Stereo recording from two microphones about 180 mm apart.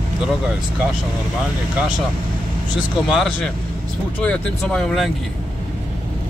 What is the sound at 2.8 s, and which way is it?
Speech, centre (ahead or behind).